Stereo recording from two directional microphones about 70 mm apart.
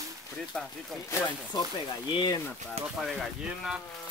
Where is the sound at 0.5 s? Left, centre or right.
Centre.